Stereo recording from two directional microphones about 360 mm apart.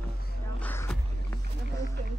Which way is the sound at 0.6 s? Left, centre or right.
Centre.